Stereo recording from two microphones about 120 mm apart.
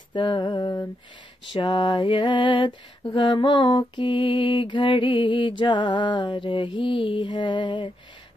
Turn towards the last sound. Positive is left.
turn(degrees=40)  # may be behind; listen again after turning